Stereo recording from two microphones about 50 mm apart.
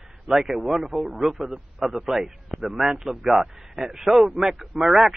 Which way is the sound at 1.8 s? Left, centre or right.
Centre.